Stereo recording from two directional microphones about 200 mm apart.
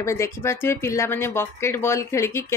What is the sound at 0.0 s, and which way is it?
Speech, 15° left (ahead or behind).